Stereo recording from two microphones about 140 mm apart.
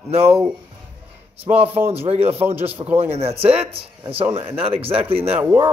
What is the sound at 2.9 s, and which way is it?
Speech, 45° right (ahead or behind).